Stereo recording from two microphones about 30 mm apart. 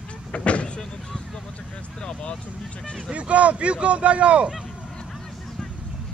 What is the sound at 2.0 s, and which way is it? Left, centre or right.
Vehicle, left.